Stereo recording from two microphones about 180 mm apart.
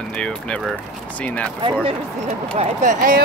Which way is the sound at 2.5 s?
40° right (ahead or behind).